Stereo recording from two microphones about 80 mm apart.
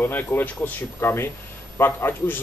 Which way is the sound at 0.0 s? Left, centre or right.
Left.